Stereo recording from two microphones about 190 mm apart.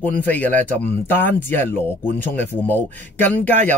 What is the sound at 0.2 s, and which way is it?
A man's voice, 10° left (ahead or behind).